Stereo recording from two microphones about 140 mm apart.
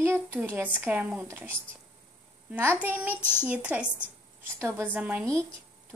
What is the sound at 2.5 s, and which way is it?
Speech, 15° right (ahead or behind).